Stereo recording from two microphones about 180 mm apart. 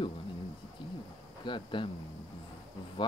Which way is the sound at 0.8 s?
30° left (ahead or behind).